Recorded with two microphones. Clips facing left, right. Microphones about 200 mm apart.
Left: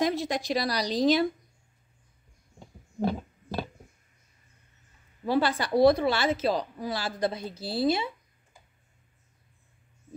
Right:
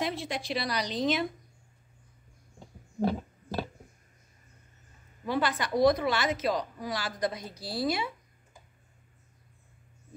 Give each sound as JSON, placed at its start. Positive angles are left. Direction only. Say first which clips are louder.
{"t": 0.0, "sound": "a woman's voice", "louder": "left 6 dB", "side_deg": 40}
{"t": 5.2, "sound": "a woman's voice", "louder": "left 4 dB", "side_deg": 30}